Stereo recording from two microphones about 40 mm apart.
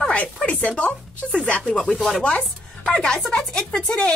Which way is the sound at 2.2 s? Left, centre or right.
Left.